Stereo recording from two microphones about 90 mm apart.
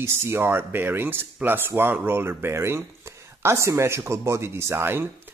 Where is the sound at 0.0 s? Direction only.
30° right (ahead or behind).